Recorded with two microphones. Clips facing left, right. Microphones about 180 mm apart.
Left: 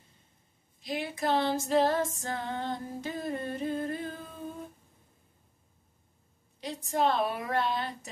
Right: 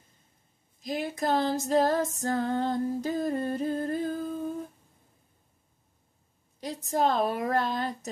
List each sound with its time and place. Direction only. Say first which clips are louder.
0.7 s female singing: right 3 dB; 45° right (ahead or behind)
6.6 s a woman's voice: right 2 dB; 40° right (ahead or behind)